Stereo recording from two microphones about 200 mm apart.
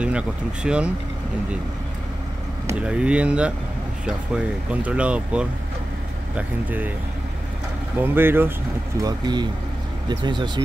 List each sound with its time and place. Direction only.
0.0 s speech: 5° right (ahead or behind)
2.6 s speech: 5° right (ahead or behind)
4.6 s speech: 5° right (ahead or behind)
8.0 s speech: 10° right (ahead or behind)
9.0 s speech: 20° right (ahead or behind)